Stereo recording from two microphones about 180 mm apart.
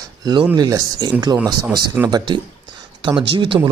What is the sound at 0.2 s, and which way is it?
Speech, 25° right (ahead or behind).